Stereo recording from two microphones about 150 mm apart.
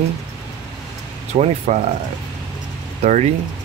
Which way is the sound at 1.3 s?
45° right (ahead or behind).